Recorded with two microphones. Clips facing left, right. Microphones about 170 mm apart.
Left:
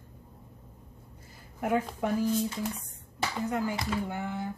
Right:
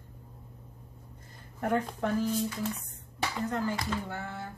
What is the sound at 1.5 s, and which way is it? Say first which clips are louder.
Speech: left 1 dB; 5° left (ahead or behind).